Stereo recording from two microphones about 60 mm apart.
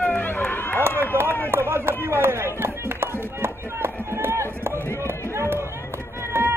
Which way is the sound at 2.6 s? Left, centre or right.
Right.